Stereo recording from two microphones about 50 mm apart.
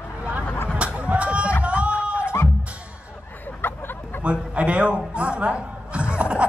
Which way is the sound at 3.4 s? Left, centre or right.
Left.